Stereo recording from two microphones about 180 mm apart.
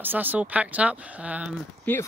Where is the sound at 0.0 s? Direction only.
10° right (ahead or behind).